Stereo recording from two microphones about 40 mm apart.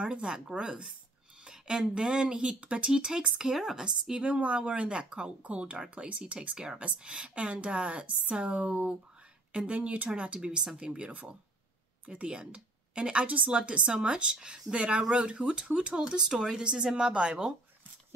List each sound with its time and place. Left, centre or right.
0.0 s speech: right
2.9 s speech: centre
3.8 s speech: right
4.3 s speech: right
12.1 s a woman's voice: right
16.3 s speech: centre